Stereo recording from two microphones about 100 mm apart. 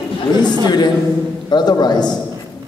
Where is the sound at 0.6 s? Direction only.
45° left (ahead or behind).